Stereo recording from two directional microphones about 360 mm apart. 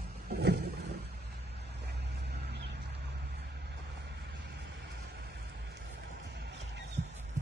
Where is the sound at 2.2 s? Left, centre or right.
Right.